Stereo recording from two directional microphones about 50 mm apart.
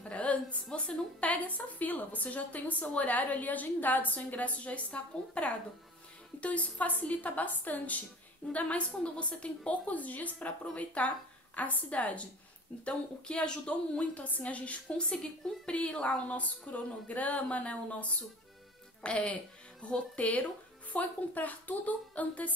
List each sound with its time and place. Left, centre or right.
0.1 s a sound: left
0.7 s a woman's voice: left
19.0 s a woman's voice: left